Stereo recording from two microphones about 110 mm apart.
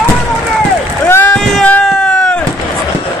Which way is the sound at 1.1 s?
20° left (ahead or behind).